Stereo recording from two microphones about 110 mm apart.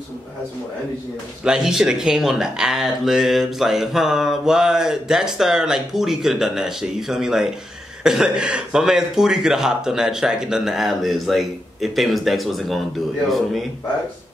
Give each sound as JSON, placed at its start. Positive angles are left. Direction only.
{"t": 1.4, "sound": "speech", "side_deg": -5}